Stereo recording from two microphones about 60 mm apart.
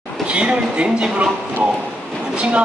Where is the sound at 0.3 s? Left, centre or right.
Centre.